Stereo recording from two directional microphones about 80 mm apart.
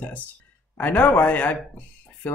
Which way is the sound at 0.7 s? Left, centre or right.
Left.